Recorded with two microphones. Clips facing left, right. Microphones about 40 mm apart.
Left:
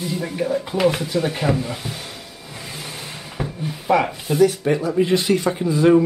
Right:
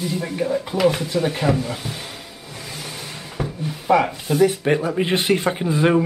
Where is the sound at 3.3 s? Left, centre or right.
Centre.